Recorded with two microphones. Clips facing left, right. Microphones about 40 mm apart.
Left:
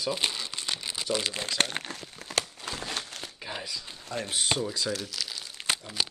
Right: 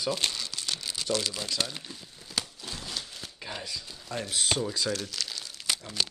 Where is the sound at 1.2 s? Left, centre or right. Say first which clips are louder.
Left 1 dB; left.